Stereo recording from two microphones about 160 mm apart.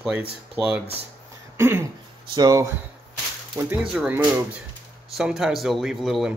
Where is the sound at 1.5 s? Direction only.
15° right (ahead or behind).